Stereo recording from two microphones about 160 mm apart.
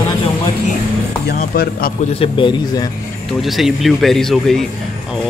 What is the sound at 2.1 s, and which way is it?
Speech, 30° left (ahead or behind).